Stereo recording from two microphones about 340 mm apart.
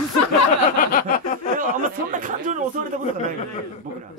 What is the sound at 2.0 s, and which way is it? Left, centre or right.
Speech, right.